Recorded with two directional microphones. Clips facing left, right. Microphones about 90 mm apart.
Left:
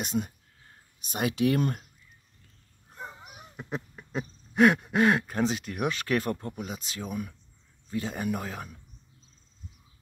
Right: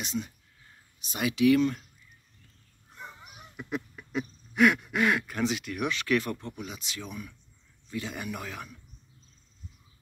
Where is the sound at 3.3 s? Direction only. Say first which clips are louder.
Right 3 dB; 35° left (ahead or behind).